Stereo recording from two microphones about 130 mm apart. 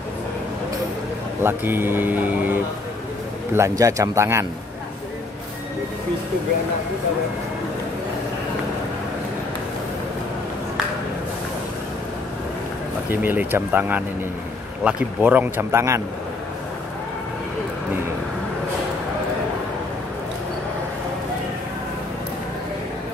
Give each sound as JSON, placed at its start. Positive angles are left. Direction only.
{"t": 1.4, "sound": "speech", "side_deg": -15}
{"t": 13.1, "sound": "speech", "side_deg": -15}